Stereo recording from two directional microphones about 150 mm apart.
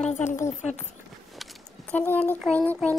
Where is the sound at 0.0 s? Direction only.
50° left (ahead or behind).